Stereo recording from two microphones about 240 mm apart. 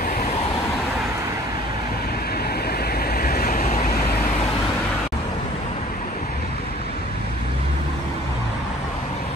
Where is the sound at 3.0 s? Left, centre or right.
Left.